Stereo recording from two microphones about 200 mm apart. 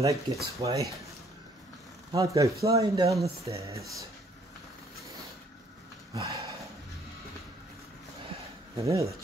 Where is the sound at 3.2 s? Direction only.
30° right (ahead or behind).